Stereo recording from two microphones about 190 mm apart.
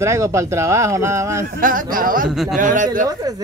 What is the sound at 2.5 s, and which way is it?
Speech, 45° right (ahead or behind).